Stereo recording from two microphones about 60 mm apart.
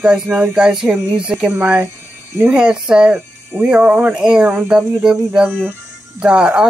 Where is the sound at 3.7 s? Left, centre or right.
Right.